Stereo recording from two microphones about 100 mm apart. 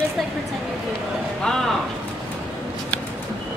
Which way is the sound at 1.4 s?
5° left (ahead or behind).